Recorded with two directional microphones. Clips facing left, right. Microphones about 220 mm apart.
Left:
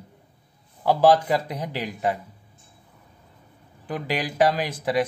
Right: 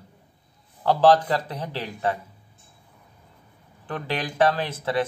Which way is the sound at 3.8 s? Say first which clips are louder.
Left 2 dB; 10° left (ahead or behind).